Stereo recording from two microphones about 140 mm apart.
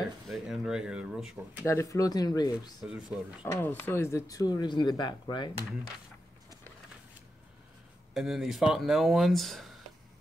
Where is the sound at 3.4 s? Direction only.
15° left (ahead or behind); by 5.5 s 30° left (ahead or behind).